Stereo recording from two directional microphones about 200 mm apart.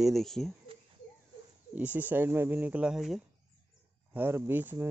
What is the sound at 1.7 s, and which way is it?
Speech, 10° right (ahead or behind).